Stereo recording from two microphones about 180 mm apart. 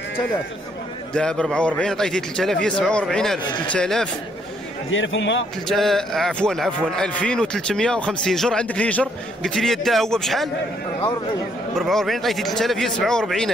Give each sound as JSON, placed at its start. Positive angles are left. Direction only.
{"t": 1.1, "sound": "a man's voice", "side_deg": 5}
{"t": 4.9, "sound": "a man's voice", "side_deg": 90}
{"t": 5.7, "sound": "a man's voice", "side_deg": 0}
{"t": 11.7, "sound": "a man's voice", "side_deg": 0}